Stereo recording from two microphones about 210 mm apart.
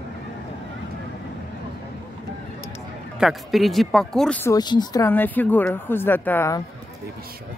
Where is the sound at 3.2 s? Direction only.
Centre (ahead or behind).